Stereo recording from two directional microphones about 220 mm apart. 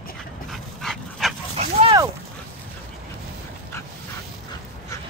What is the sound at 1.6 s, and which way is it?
Dog, 25° right (ahead or behind).